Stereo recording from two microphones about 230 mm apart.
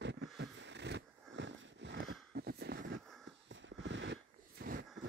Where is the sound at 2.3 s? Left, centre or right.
Right.